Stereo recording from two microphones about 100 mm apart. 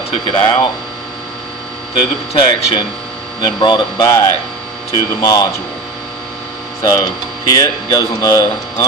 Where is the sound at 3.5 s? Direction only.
45° left (ahead or behind).